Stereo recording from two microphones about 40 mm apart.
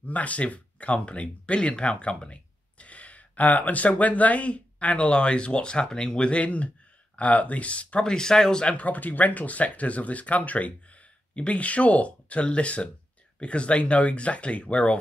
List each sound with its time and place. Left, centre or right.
0.0 s speech: left
8.0 s speech: centre
8.6 s speech: left